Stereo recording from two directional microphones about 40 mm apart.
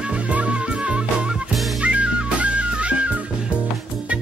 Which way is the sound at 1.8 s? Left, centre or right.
Right.